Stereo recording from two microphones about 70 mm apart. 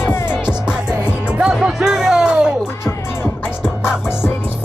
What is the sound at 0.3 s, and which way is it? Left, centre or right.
Music, centre.